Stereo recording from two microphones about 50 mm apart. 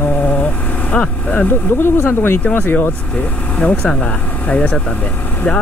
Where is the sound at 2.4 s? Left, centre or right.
Left.